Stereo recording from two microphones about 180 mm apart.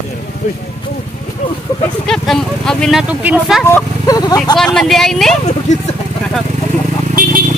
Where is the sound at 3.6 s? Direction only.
15° left (ahead or behind).